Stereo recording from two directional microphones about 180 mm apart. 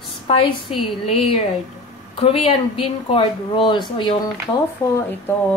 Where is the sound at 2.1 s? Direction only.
30° left (ahead or behind).